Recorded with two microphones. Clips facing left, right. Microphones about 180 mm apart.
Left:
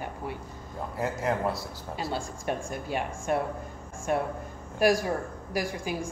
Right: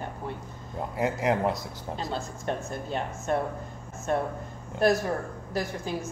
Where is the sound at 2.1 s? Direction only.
10° left (ahead or behind).